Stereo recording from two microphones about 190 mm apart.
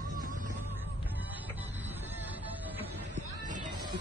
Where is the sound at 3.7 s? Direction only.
20° right (ahead or behind).